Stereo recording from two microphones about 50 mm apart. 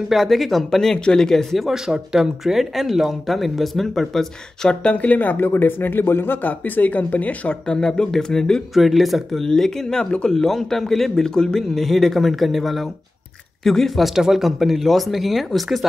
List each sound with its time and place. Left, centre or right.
0.1 s speech: centre
1.7 s speech: centre
4.8 s speech: left
5.4 s speech: left
7.6 s speech: centre
8.7 s speech: centre